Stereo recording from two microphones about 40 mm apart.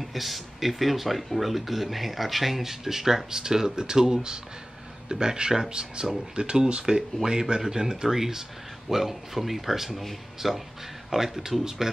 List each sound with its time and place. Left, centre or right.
0.0 s a man's voice: centre